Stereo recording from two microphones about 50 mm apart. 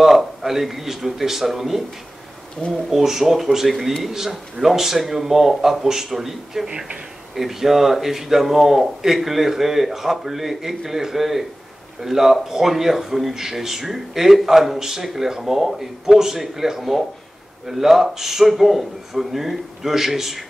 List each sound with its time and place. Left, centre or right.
0.0 s speech: centre
2.9 s a man's voice: centre
6.7 s speech: centre
7.3 s a man's voice: centre